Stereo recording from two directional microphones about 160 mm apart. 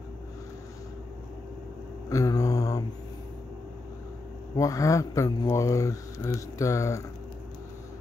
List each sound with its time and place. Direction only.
2.0 s mantra: 20° left (ahead or behind)
4.6 s speech: 20° left (ahead or behind)